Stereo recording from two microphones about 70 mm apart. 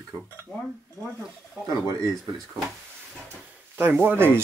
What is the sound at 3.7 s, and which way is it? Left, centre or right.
Speech, right.